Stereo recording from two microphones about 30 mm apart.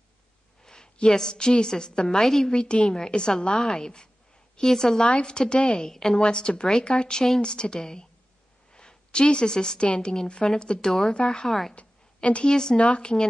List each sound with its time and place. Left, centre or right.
1.1 s a woman's voice: left
2.2 s a woman's voice: centre
2.5 s a woman's voice: left
4.6 s a woman's voice: centre
5.0 s a woman's voice: left
5.9 s a woman's voice: centre
6.1 s a woman's voice: left
8.7 s a sound: left
9.8 s a woman's voice: left
11.4 s a woman's voice: centre
11.7 s a sound: left
12.4 s a woman's voice: centre
12.7 s speech: left